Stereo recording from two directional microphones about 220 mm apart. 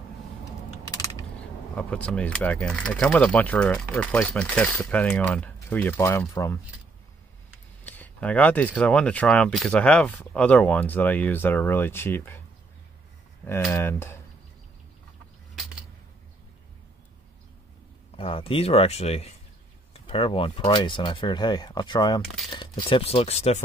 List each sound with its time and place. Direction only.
0.5 s computer keyboard: 15° left (ahead or behind)
1.8 s speech: 5° left (ahead or behind)
7.8 s speech: 10° left (ahead or behind)
13.7 s speech: 10° left (ahead or behind)
18.1 s speech: 25° left (ahead or behind)